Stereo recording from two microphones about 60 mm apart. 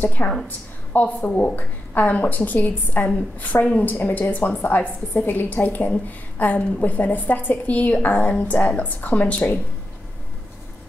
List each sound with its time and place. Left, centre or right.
0.0 s a woman's voice: left